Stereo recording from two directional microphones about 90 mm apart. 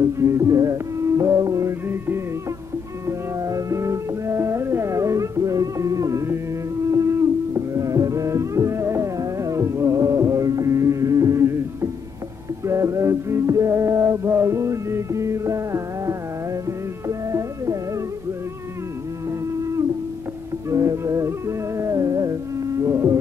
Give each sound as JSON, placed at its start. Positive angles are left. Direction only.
{"t": 0.0, "sound": "music", "side_deg": -35}
{"t": 3.1, "sound": "music", "side_deg": -40}
{"t": 20.7, "sound": "music", "side_deg": -35}